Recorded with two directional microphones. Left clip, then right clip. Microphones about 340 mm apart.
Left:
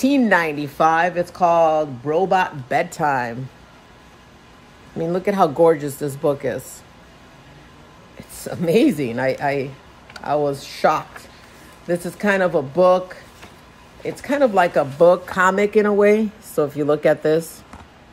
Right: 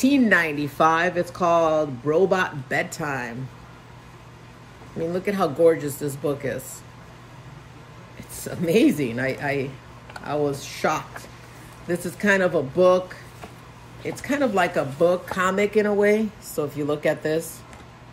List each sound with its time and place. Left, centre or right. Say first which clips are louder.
0.0 s speech: left 2 dB; centre
5.1 s speech: left 7 dB; centre
8.4 s speech: left 3 dB; centre